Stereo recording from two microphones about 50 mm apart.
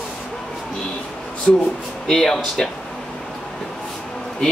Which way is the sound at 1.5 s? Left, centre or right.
Centre.